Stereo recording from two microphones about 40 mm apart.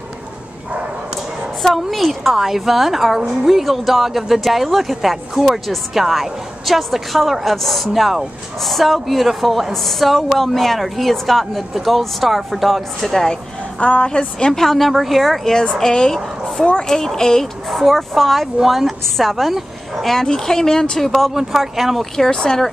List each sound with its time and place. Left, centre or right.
1.7 s speech: centre
13.7 s a woman's voice: left
14.0 s speech: centre
21.3 s speech: centre
22.1 s speech: centre